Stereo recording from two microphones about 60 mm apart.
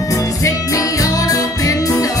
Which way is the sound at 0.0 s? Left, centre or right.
Left.